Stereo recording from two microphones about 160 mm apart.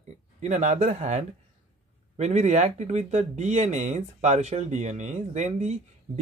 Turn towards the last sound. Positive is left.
turn(degrees=-45)  # may be behind; listen again after turning